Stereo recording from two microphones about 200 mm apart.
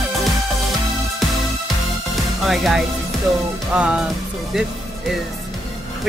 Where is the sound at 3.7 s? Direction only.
5° right (ahead or behind).